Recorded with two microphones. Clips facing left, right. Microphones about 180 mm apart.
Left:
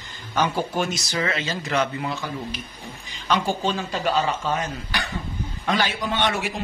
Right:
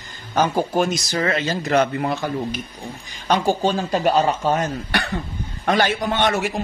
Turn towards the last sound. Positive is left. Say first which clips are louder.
# right 4 dB
turn(degrees=-45)  # may be behind; listen again after turning